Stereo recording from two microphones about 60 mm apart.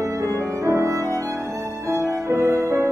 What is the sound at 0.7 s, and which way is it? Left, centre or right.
Music, right.